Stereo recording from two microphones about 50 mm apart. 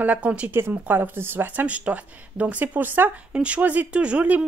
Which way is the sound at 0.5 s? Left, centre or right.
Right.